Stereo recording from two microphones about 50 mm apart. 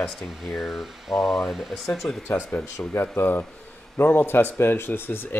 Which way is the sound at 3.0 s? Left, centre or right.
Left.